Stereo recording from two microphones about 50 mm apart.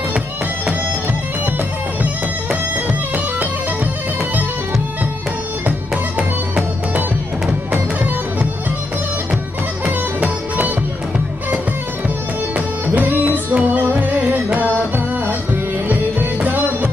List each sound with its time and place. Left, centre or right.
5.7 s music: right
9.8 s music: right
12.8 s music: right
15.9 s music: right